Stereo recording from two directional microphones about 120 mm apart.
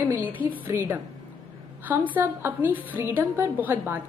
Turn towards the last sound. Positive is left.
turn(degrees=-15)  # may be behind; listen again after turning